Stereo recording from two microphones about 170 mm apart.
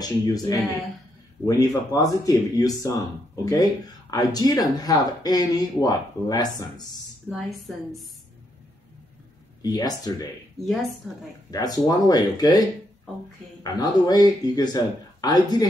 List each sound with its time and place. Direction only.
0.0 s speech: 20° left (ahead or behind)
7.2 s a woman's voice: centre (ahead or behind)
9.6 s speech: 20° left (ahead or behind)
10.6 s a woman's voice: centre (ahead or behind)
11.5 s speech: 25° left (ahead or behind)
13.7 s speech: 25° left (ahead or behind)